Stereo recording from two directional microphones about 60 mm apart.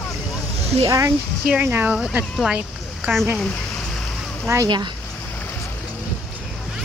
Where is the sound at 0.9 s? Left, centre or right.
Right.